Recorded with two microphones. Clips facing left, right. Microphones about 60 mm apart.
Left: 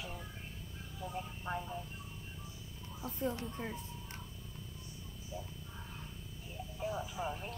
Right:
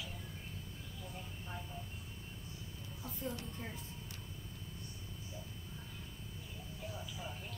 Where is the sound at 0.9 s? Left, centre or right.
Left.